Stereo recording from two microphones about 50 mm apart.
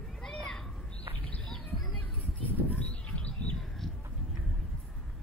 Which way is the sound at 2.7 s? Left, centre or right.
Left.